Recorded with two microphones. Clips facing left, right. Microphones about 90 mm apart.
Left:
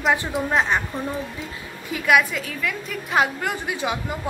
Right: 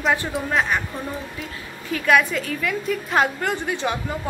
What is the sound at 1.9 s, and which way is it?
A woman's voice, 5° left (ahead or behind).